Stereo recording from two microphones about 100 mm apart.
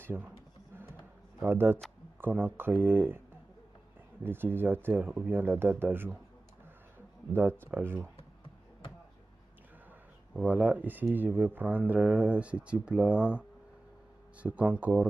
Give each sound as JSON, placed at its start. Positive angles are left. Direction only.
{"t": 0.0, "sound": "speech", "side_deg": -20}
{"t": 1.4, "sound": "speech", "side_deg": -20}
{"t": 4.2, "sound": "speech", "side_deg": -20}
{"t": 7.6, "sound": "speech", "side_deg": -20}
{"t": 10.3, "sound": "speech", "side_deg": -15}